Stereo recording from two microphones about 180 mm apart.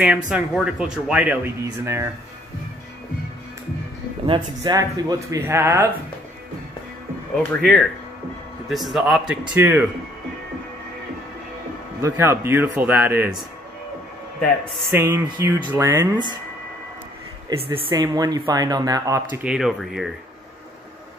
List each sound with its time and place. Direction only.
0.3 s speech: 5° right (ahead or behind)
4.3 s speech: 20° right (ahead or behind)
7.3 s speech: centre (ahead or behind)
12.0 s speech: 15° right (ahead or behind)
14.4 s speech: 5° left (ahead or behind)
15.0 s speech: 15° right (ahead or behind)
17.5 s speech: 30° right (ahead or behind)
19.4 s speech: 5° right (ahead or behind)